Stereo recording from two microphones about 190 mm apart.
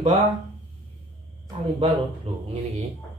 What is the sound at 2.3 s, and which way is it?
Speech, 30° right (ahead or behind).